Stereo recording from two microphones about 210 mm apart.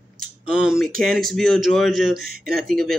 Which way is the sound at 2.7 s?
Centre (ahead or behind).